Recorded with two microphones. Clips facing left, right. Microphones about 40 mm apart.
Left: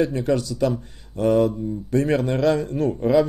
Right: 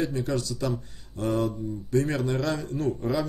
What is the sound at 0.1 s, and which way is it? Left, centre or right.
Speech, left.